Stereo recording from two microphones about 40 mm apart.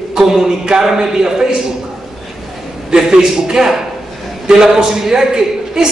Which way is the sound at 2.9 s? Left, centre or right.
Centre.